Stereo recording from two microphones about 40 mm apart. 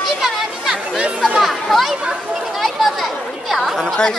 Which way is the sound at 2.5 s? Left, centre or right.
Centre.